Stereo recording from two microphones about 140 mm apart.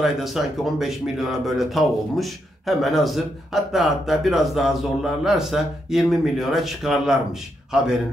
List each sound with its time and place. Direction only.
0.0 s speech: centre (ahead or behind)